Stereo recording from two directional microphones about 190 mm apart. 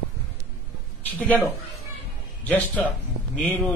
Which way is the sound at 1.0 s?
10° left (ahead or behind).